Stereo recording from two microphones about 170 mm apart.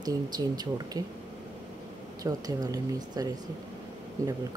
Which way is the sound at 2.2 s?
20° right (ahead or behind).